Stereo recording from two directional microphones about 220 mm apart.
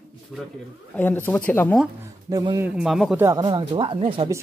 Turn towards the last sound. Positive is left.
turn(degrees=-25)  # may be behind; listen again after turning